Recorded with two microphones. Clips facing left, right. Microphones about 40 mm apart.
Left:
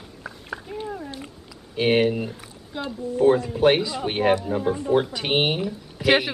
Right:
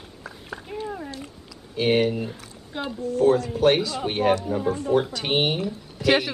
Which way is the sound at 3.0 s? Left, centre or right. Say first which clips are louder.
Left 1 dB; left.